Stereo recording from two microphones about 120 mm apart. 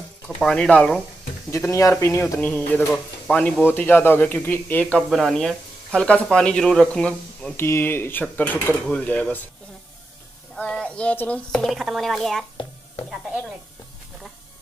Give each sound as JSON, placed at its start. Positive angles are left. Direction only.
{"t": 0.4, "sound": "speech", "side_deg": 5}
{"t": 1.7, "sound": "speech", "side_deg": 25}
{"t": 2.4, "sound": "speech", "side_deg": 15}
{"t": 5.1, "sound": "speech", "side_deg": 0}
{"t": 7.5, "sound": "speech", "side_deg": 20}
{"t": 10.5, "sound": "speech", "side_deg": 5}